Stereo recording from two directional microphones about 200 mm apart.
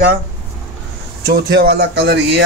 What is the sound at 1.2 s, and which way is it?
Speech, 50° right (ahead or behind).